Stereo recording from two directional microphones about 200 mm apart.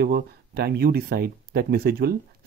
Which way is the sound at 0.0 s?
50° right (ahead or behind).